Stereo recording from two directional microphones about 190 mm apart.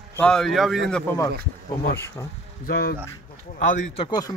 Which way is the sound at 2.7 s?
55° left (ahead or behind).